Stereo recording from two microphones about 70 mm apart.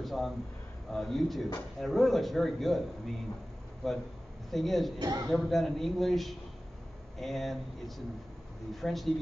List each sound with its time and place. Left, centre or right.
0.0 s speech: centre
4.9 s speech: right
5.3 s speech: centre